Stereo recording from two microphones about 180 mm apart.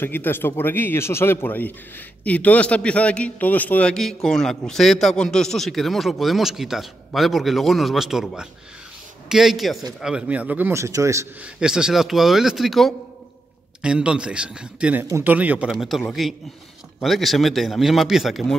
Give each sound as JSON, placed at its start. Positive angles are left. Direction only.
{"t": 0.0, "sound": "a man's voice", "side_deg": 10}
{"t": 11.4, "sound": "a man's voice", "side_deg": -5}